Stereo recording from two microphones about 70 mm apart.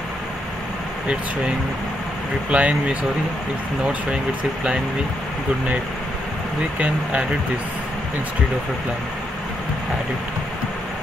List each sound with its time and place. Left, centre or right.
2.5 s speech: centre
6.8 s speech: centre